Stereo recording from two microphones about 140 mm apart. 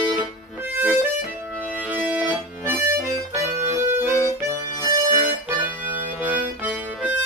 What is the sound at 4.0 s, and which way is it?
Music, 20° right (ahead or behind).